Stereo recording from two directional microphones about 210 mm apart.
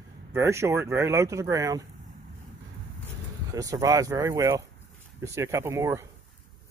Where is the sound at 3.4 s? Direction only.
15° right (ahead or behind).